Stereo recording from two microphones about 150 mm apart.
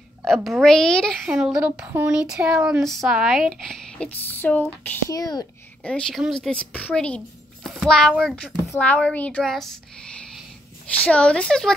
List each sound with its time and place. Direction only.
0.3 s speech: centre (ahead or behind)
1.9 s a sound: 15° right (ahead or behind)
2.1 s speech: 5° right (ahead or behind)
4.3 s speech: 10° left (ahead or behind)
5.1 s a child's voice: 25° left (ahead or behind)
5.9 s a child's voice: 5° left (ahead or behind)
8.6 s speech: 10° left (ahead or behind)